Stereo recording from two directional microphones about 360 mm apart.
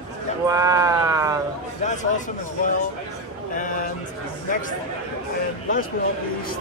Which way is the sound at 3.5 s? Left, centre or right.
Left.